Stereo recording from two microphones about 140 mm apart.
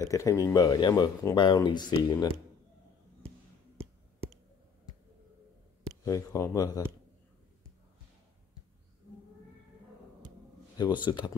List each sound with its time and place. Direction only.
0.0 s speech: 20° left (ahead or behind)
6.0 s speech: 25° left (ahead or behind)
10.8 s speech: 35° left (ahead or behind)